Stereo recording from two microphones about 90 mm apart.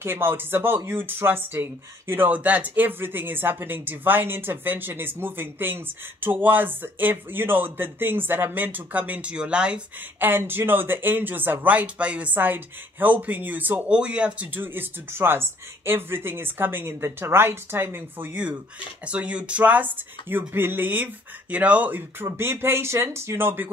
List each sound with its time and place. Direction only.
0.0 s speech: 25° right (ahead or behind); by 9.8 s 10° right (ahead or behind)
10.2 s speech: 25° right (ahead or behind)